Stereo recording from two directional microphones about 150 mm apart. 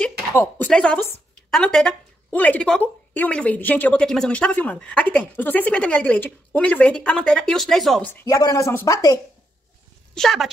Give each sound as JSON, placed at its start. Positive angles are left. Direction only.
{"t": 0.3, "sound": "a woman's voice", "side_deg": 15}
{"t": 8.1, "sound": "a woman's voice", "side_deg": 15}
{"t": 10.1, "sound": "a woman's voice", "side_deg": 0}